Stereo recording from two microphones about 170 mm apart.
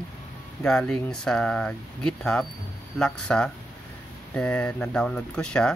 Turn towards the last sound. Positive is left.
turn(degrees=5)  # may be behind; listen again after turning